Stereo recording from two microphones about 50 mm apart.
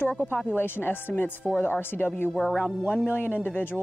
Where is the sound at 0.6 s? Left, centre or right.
Left.